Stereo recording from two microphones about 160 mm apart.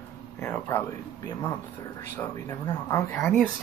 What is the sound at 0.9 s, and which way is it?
Speech, 25° left (ahead or behind).